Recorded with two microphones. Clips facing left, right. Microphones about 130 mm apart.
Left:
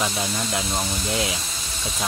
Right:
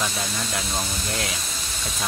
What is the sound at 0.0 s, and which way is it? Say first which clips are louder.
Speech: left 3 dB; 20° left (ahead or behind).